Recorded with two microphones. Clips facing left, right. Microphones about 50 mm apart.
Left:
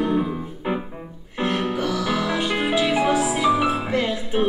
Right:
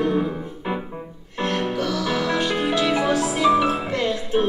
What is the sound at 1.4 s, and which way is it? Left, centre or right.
Music, centre.